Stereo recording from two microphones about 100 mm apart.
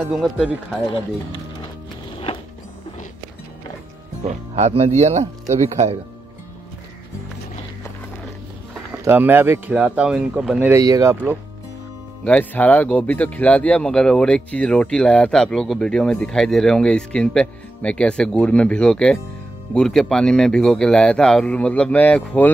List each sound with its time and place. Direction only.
0.1 s speech: 5° right (ahead or behind)
0.8 s speech: 55° left (ahead or behind)
4.6 s speech: 90° right
8.9 s speech: 25° right (ahead or behind); by 10.7 s 10° right (ahead or behind)
10.7 s speech: 35° right (ahead or behind)
12.3 s speech: 15° left (ahead or behind)